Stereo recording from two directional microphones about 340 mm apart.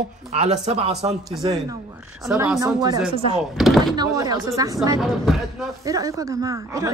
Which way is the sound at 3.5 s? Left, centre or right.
Centre.